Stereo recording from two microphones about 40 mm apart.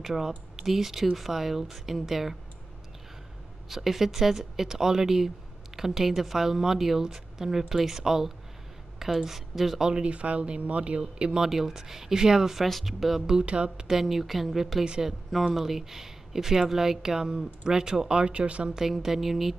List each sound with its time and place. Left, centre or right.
0.0 s speech: centre
3.6 s speech: centre
9.8 s speech: right
11.4 s speech: centre
12.6 s speech: centre
13.3 s speech: right
13.8 s speech: centre; by 18.7 s right
18.8 s speech: centre